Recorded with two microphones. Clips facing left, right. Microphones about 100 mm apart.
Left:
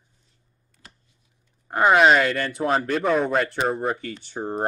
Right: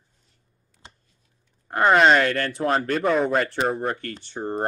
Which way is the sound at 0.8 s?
25° right (ahead or behind).